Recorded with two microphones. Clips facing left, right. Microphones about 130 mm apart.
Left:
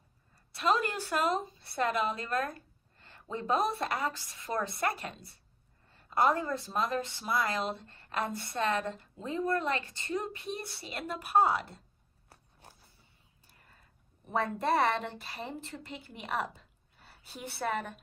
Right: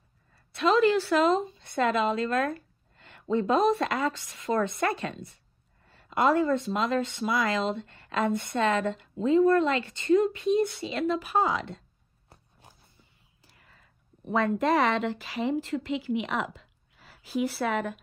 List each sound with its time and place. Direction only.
0.6 s a woman's voice: 85° right
13.4 s speech: 90° right